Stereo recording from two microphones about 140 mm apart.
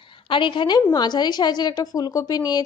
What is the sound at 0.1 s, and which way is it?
A woman's voice, 35° left (ahead or behind).